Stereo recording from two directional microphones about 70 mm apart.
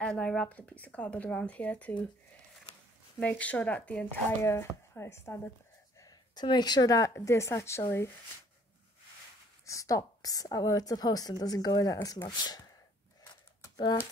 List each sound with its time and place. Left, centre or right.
0.0 s speech: centre
3.2 s speech: centre
4.4 s speech: left
5.9 s speech: left
7.2 s speech: left
9.7 s a woman's voice: left
12.3 s speech: left